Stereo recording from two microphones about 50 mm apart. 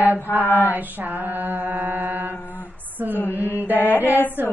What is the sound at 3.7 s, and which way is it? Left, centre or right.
Mantra, left.